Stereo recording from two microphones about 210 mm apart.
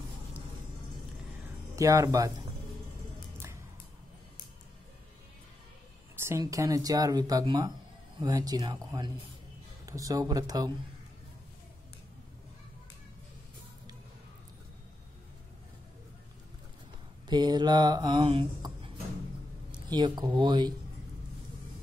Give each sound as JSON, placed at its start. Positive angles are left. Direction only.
{"t": 1.8, "sound": "speech", "side_deg": -15}
{"t": 6.1, "sound": "speech", "side_deg": -15}
{"t": 8.2, "sound": "mantra", "side_deg": -20}
{"t": 9.8, "sound": "speech", "side_deg": -15}
{"t": 17.3, "sound": "mantra", "side_deg": -20}
{"t": 19.7, "sound": "speech", "side_deg": -20}